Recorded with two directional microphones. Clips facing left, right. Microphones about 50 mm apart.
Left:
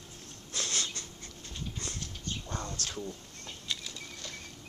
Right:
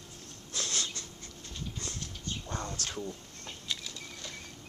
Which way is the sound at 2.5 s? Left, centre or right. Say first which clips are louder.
Right 2 dB; right.